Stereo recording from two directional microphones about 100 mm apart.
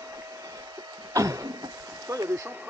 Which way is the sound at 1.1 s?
35° right (ahead or behind).